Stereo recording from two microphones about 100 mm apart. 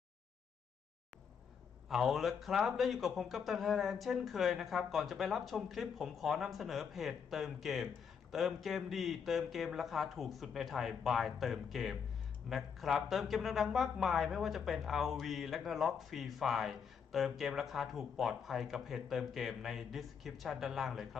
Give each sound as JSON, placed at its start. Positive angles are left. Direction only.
{"t": 1.9, "sound": "speech", "side_deg": 0}